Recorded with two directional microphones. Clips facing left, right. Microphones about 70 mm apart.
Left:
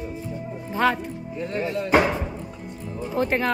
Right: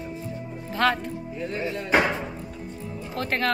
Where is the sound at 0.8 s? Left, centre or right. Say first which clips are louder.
Left 1 dB; centre.